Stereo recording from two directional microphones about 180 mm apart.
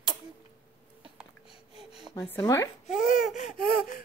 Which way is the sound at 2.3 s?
20° left (ahead or behind).